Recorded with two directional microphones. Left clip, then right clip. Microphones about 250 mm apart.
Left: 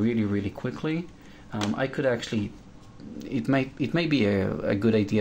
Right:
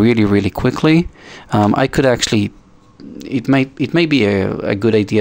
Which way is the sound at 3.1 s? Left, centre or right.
Right.